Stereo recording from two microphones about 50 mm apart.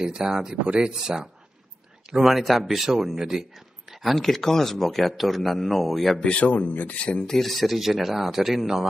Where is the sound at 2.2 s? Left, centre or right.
Centre.